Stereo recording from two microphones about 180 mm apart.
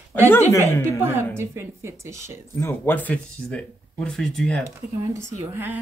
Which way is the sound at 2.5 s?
10° left (ahead or behind).